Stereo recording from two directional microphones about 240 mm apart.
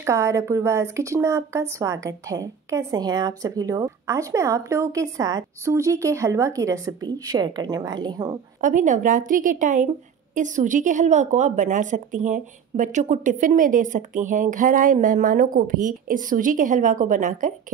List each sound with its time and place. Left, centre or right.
0.0 s a woman's voice: centre
8.5 s a woman's voice: right